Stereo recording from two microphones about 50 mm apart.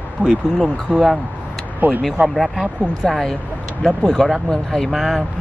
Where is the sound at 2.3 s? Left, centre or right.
Centre.